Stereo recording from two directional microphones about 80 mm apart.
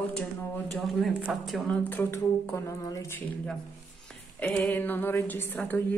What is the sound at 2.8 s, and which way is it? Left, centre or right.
Speech, left.